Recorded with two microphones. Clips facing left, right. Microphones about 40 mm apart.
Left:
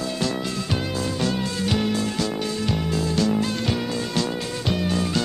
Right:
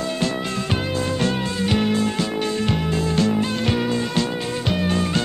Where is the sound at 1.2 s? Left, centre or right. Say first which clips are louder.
Right 2 dB; right.